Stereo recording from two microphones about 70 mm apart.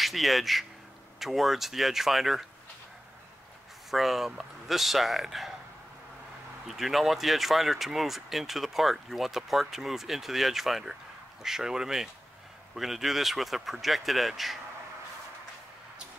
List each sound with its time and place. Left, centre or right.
0.0 s speech: centre
3.9 s speech: centre
6.7 s speech: centre